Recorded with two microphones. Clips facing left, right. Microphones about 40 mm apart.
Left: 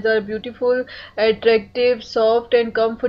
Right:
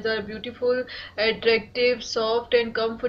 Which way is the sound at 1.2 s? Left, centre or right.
Centre.